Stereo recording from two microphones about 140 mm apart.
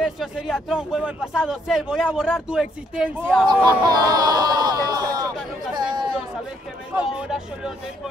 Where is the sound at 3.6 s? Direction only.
30° right (ahead or behind).